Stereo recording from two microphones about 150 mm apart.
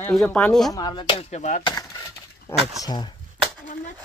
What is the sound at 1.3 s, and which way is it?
Speech, 50° left (ahead or behind).